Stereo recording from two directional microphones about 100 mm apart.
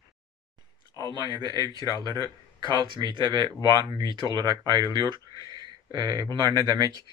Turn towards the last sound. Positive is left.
turn(degrees=-40)  # may be behind; listen again after turning